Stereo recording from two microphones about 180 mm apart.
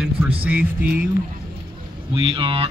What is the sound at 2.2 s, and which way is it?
Speech, 30° right (ahead or behind).